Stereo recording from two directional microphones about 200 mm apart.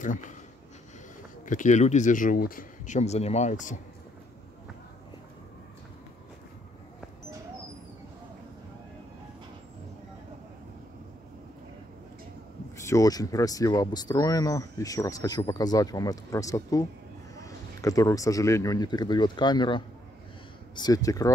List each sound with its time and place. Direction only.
1.4 s speech: 40° left (ahead or behind)
12.7 s speech: 15° left (ahead or behind)